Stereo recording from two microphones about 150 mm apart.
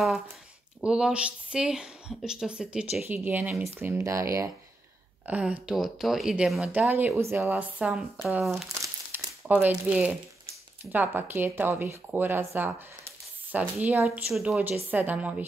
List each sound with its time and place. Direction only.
0.7 s speech: 5° right (ahead or behind); by 4.5 s 20° right (ahead or behind)
5.2 s speech: 10° right (ahead or behind)
8.8 s crumpling: 20° right (ahead or behind)
9.5 s speech: 10° right (ahead or behind)
14.9 s speech: 10° right (ahead or behind)